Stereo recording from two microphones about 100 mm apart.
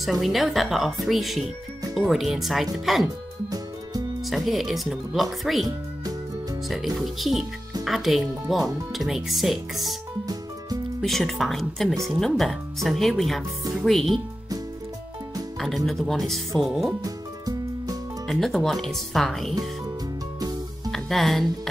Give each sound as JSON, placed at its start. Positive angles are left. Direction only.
{"t": 0.0, "sound": "speech", "side_deg": 0}
{"t": 3.4, "sound": "music", "side_deg": -40}
{"t": 4.2, "sound": "speech", "side_deg": 0}
{"t": 7.0, "sound": "speech", "side_deg": -5}
{"t": 11.0, "sound": "speech", "side_deg": 5}
{"t": 15.6, "sound": "speech", "side_deg": 0}
{"t": 17.0, "sound": "music", "side_deg": -35}
{"t": 18.2, "sound": "speech", "side_deg": 0}
{"t": 20.3, "sound": "music", "side_deg": -40}
{"t": 20.9, "sound": "speech", "side_deg": 0}